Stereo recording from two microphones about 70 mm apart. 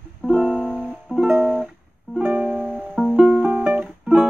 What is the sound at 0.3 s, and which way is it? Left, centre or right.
Music, centre.